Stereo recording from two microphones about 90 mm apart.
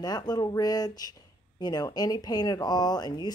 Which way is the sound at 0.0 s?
50° left (ahead or behind).